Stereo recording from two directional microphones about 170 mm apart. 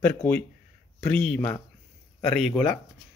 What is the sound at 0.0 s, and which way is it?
Speech, 10° left (ahead or behind).